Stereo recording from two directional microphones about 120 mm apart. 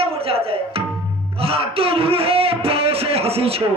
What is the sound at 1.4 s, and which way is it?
Speech, 55° right (ahead or behind).